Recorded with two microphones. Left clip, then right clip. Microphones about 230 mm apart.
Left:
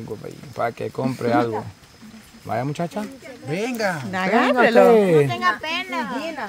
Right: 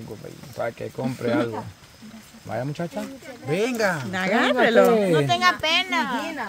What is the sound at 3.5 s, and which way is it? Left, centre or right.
Speech, centre.